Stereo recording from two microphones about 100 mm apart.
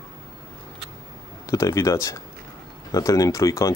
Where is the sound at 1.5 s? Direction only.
30° left (ahead or behind).